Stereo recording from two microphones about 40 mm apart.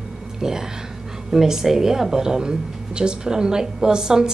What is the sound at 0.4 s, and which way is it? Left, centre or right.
A woman's voice, centre.